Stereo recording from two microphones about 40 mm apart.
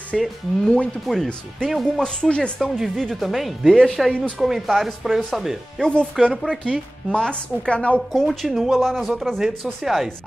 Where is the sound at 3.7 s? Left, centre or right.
Centre.